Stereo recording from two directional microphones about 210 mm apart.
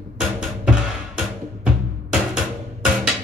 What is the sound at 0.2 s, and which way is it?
Music, 5° right (ahead or behind).